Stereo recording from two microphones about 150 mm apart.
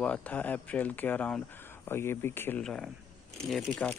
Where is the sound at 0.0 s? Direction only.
10° left (ahead or behind).